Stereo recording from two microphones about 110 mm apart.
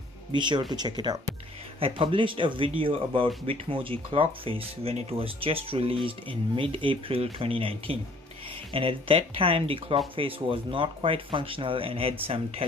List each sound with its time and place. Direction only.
0.3 s speech: 45° right (ahead or behind)
1.8 s speech: 55° right (ahead or behind)